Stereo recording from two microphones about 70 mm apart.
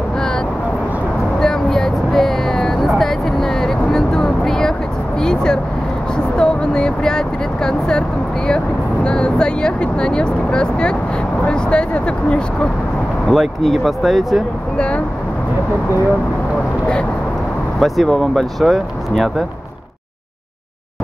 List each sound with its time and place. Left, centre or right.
1.4 s vehicle: centre
9.0 s speech: centre
13.3 s speech: centre
17.7 s speech: centre